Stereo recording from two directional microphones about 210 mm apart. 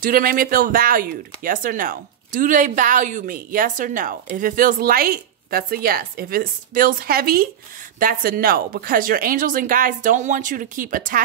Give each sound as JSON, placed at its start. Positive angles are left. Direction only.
{"t": 0.0, "sound": "speech", "side_deg": -45}